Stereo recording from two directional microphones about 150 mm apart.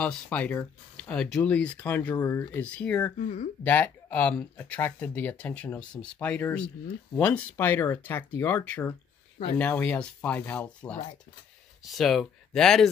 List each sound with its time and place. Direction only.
0.0 s speech: 10° left (ahead or behind)
3.2 s speech: 55° left (ahead or behind)
3.6 s speech: 10° left (ahead or behind)